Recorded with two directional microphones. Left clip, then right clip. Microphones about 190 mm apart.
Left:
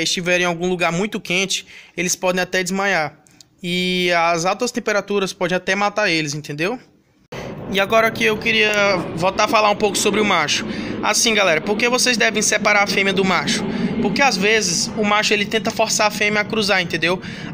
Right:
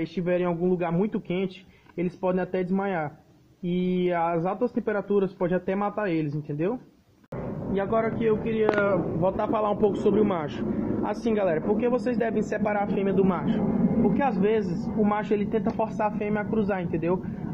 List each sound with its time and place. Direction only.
0.0 s speech: 15° left (ahead or behind)
7.7 s speech: 25° left (ahead or behind)